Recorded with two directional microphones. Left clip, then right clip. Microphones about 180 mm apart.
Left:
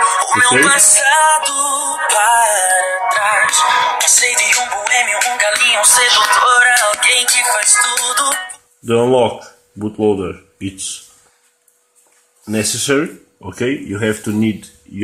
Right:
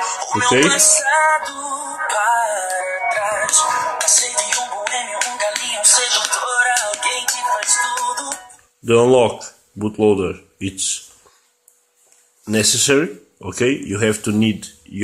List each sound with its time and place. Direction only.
0.0 s music: 15° left (ahead or behind)
3.2 s music: 15° left (ahead or behind)
3.6 s music: 25° left (ahead or behind)
8.8 s speech: 15° right (ahead or behind)
12.4 s speech: 15° right (ahead or behind)